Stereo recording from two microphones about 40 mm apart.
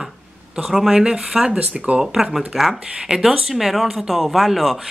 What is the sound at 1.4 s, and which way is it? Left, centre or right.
Speech, right.